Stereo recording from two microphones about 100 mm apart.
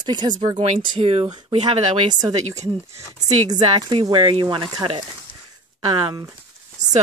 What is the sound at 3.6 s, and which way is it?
Speech, 60° right (ahead or behind).